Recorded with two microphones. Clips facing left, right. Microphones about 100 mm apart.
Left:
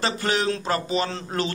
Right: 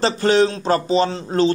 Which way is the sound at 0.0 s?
30° right (ahead or behind).